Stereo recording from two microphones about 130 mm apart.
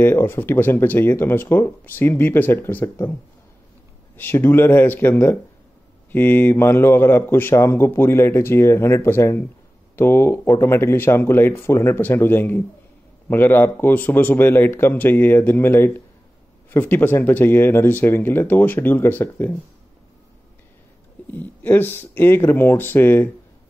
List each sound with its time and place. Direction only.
0.0 s speech: 20° left (ahead or behind)
4.2 s speech: 15° left (ahead or behind)
21.3 s speech: 15° left (ahead or behind)